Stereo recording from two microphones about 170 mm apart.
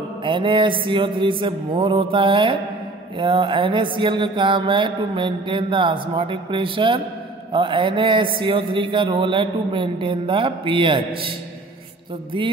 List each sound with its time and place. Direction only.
0.2 s a man's voice: 30° right (ahead or behind)